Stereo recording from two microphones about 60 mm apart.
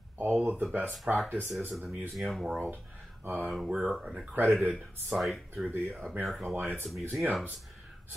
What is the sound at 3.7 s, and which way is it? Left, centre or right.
Speech, centre.